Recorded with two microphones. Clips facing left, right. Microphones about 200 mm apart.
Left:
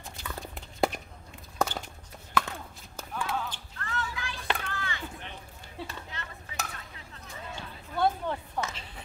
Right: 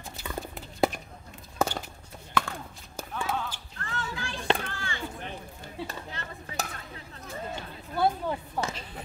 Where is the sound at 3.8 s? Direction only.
30° right (ahead or behind).